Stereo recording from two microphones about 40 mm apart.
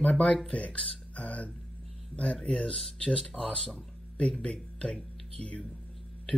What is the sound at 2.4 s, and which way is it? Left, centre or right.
Speech, left.